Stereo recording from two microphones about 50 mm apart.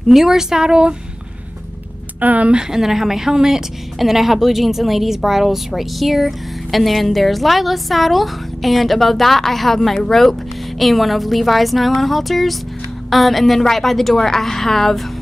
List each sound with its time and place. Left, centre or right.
0.1 s speech: centre
2.1 s speech: right
2.5 s a woman's voice: centre